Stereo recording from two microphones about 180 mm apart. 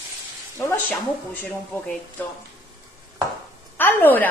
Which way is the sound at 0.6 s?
15° left (ahead or behind).